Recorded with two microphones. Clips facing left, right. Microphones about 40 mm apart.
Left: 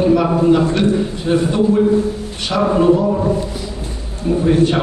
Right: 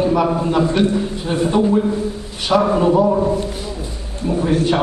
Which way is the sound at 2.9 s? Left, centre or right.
Centre.